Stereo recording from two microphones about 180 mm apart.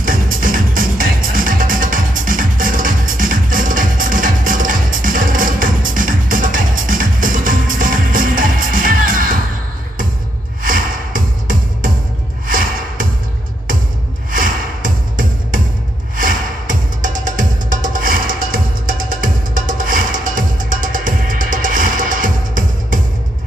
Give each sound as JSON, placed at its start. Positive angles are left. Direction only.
{"t": 0.0, "sound": "music", "side_deg": -50}
{"t": 10.6, "sound": "music", "side_deg": -50}
{"t": 14.3, "sound": "music", "side_deg": -50}